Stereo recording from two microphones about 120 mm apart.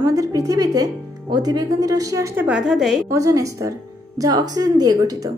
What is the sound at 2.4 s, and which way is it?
Speech, 5° right (ahead or behind).